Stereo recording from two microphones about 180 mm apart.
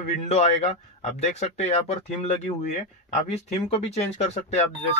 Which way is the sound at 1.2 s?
35° left (ahead or behind).